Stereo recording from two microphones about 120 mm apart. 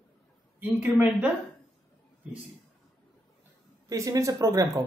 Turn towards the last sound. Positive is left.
turn(degrees=-30)  # may be behind; listen again after turning